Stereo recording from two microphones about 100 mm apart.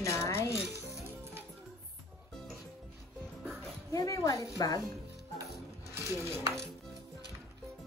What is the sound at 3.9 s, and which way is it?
Speech, 35° left (ahead or behind).